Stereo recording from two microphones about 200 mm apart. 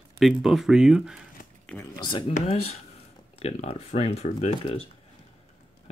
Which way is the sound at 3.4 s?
30° left (ahead or behind).